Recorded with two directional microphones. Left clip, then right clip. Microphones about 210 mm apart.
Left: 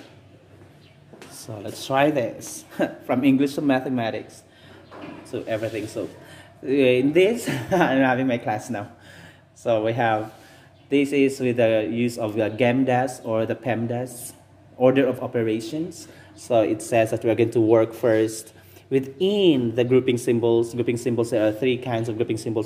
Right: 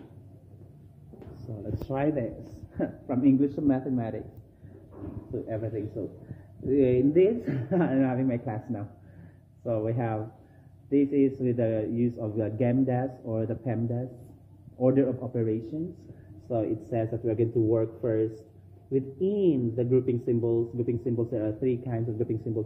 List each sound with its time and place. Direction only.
1.9 s speech: 30° left (ahead or behind)
6.0 s speech: 20° left (ahead or behind)